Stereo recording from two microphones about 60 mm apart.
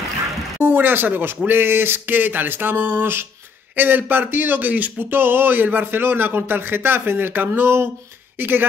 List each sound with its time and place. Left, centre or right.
0.6 s speech: right